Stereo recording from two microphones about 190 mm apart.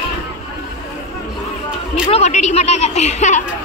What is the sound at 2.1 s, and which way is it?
A woman's voice, 35° left (ahead or behind).